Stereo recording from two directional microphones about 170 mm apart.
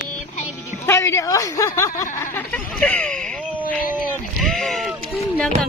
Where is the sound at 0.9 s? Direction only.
15° left (ahead or behind).